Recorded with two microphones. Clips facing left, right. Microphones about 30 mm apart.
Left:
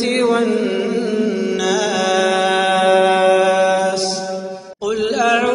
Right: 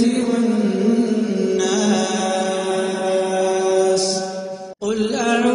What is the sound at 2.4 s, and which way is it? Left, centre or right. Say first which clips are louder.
Mantra: left 6 dB; left.